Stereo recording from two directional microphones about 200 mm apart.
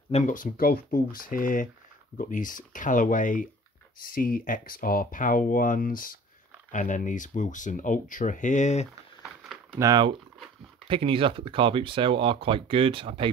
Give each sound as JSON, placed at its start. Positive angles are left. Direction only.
{"t": 0.1, "sound": "speech", "side_deg": 40}
{"t": 9.8, "sound": "speech", "side_deg": -20}